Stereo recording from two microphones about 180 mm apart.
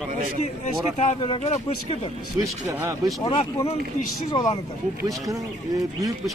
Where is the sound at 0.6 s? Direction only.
40° left (ahead or behind).